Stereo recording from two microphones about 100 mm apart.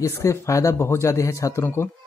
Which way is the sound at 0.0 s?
30° left (ahead or behind).